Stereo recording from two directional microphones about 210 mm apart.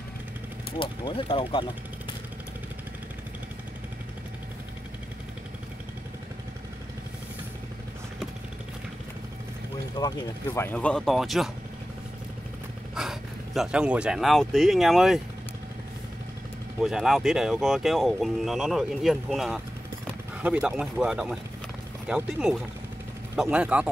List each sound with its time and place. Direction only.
0.7 s speech: 25° left (ahead or behind)
9.9 s speech: 20° left (ahead or behind); by 11.5 s centre (ahead or behind)
12.9 s speech: centre (ahead or behind)
16.8 s speech: centre (ahead or behind)